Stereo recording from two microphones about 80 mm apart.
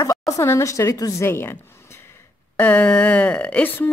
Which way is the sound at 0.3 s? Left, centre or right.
Left.